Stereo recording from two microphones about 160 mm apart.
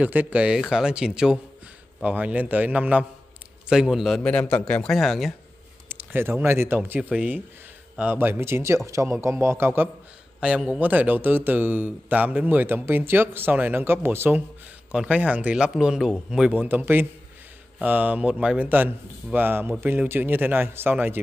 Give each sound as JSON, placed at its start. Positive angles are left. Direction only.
{"t": 0.0, "sound": "a man's voice", "side_deg": -10}
{"t": 5.9, "sound": "a man's voice", "side_deg": -15}